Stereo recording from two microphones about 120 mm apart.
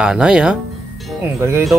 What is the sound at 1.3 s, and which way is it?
Speech, 20° right (ahead or behind).